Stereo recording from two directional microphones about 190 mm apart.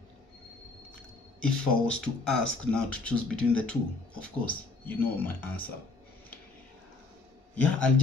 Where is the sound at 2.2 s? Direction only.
5° left (ahead or behind).